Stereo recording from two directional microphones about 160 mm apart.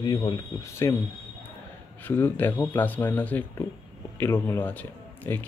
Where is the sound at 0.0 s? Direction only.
25° left (ahead or behind).